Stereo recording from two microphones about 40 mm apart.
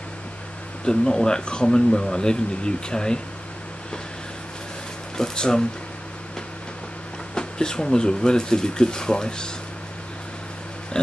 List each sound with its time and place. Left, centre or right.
0.8 s speech: left
5.1 s speech: centre
7.3 s speech: centre